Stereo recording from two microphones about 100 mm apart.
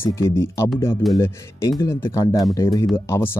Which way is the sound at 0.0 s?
25° left (ahead or behind).